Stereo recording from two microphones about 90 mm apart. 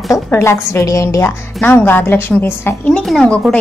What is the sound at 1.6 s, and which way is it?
Speech, 20° left (ahead or behind).